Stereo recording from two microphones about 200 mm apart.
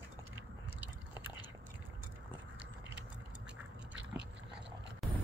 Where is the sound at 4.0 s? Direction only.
60° right (ahead or behind).